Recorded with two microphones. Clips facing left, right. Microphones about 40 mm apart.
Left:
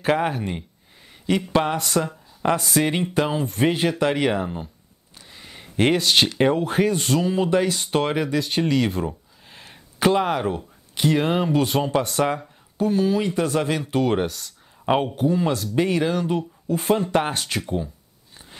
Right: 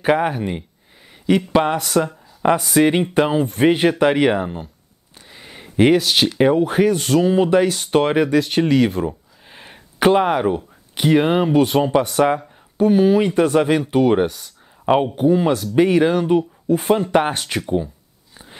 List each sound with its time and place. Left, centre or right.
0.0 s speech: centre
7.2 s speech: centre
9.5 s speech: centre
14.9 s speech: centre
15.1 s speech: centre